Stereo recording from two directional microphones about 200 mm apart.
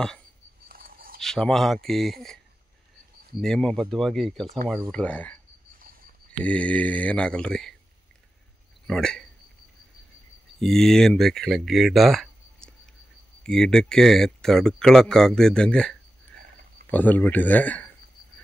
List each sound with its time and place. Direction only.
0.7 s a sound: 45° right (ahead or behind)
1.2 s speech: centre (ahead or behind)
3.3 s speech: 5° left (ahead or behind)
6.4 s speech: 5° left (ahead or behind)
8.8 s speech: 5° left (ahead or behind)
10.6 s speech: centre (ahead or behind)